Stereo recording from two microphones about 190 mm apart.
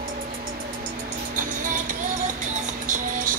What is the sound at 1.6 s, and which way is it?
Music, 45° right (ahead or behind).